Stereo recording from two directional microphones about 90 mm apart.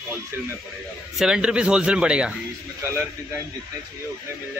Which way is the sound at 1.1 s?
5° right (ahead or behind).